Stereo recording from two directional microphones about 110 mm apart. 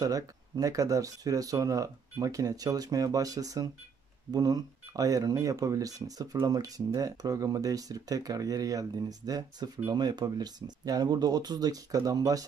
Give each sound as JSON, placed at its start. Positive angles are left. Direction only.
{"t": 0.0, "sound": "speech", "side_deg": -35}